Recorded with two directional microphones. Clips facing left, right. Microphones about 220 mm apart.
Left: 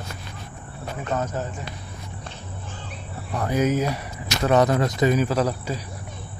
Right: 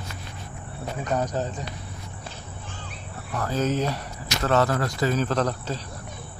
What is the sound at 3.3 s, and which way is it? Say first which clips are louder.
Speech: left 3 dB; 15° left (ahead or behind).